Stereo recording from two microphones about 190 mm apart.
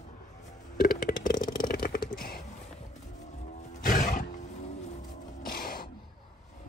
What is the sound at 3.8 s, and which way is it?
Wild animals, 45° left (ahead or behind).